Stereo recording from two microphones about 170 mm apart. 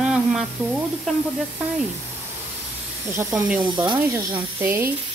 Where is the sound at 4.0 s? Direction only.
15° right (ahead or behind).